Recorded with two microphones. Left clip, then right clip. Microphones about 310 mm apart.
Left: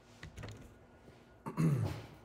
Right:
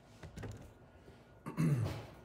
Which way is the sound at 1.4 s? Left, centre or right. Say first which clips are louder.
Left 2 dB; centre.